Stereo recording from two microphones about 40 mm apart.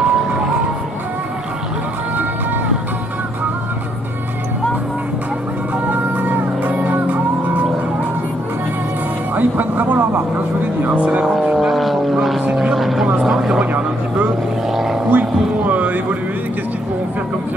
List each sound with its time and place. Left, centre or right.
0.0 s music: right
5.9 s music: right
9.3 s music: right
11.0 s vehicle: right
11.5 s vehicle: centre
13.6 s vehicle: right
14.7 s vehicle: centre
15.0 s music: right